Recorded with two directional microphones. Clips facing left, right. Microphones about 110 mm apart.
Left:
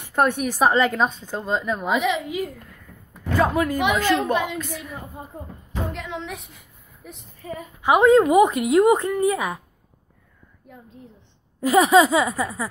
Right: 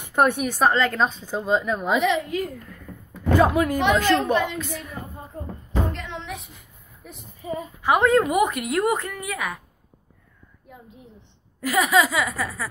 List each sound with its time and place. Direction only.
0.0 s a woman's voice: 10° right (ahead or behind)
0.5 s a woman's voice: 10° left (ahead or behind)
1.0 s a woman's voice: 5° right (ahead or behind)
2.9 s a sound: 45° right (ahead or behind)
3.3 s speech: 15° right (ahead or behind)
3.7 s a woman's voice: 10° left (ahead or behind)
5.3 s speech: 15° left (ahead or behind)
5.9 s a sound: 5° left (ahead or behind)
7.8 s a woman's voice: 20° left (ahead or behind)
10.7 s a woman's voice: 5° right (ahead or behind)
11.6 s a woman's voice: 30° left (ahead or behind)